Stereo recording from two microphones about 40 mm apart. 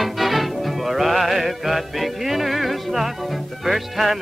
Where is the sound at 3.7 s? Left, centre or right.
Centre.